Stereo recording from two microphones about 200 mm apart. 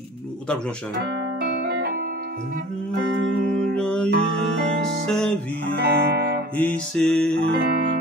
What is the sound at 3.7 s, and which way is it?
Music, 5° left (ahead or behind).